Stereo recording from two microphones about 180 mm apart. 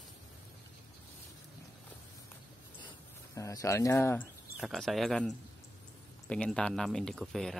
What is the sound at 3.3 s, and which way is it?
Speech, 15° left (ahead or behind).